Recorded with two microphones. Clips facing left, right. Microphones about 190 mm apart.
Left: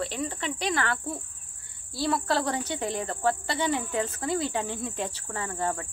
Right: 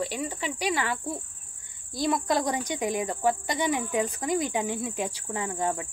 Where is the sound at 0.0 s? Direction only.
10° right (ahead or behind).